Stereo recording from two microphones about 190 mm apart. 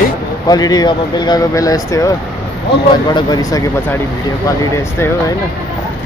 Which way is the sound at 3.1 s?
20° left (ahead or behind).